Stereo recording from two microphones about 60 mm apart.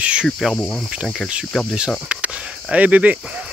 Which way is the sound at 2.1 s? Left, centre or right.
Right.